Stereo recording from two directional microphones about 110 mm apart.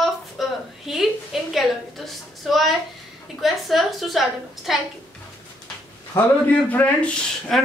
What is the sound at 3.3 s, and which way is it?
A man's voice, centre (ahead or behind).